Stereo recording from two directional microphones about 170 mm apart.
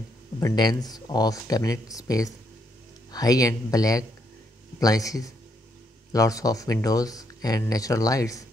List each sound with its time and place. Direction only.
0.4 s speech: 20° left (ahead or behind)